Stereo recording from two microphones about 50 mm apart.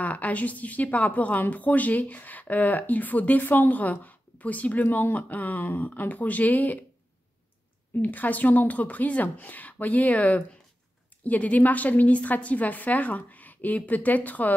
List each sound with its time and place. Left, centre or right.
0.0 s a woman's voice: left
8.0 s a woman's voice: left